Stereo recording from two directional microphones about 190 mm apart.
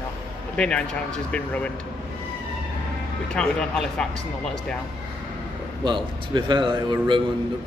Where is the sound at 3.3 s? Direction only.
5° left (ahead or behind).